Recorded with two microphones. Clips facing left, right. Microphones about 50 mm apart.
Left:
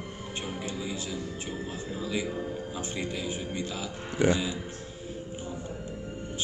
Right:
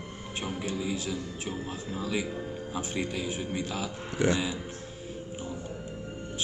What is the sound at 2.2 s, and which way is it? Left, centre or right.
Speech, centre.